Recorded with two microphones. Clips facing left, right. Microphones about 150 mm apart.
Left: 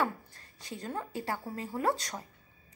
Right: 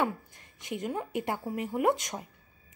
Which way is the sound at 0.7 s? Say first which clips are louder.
Right 5 dB; 20° right (ahead or behind).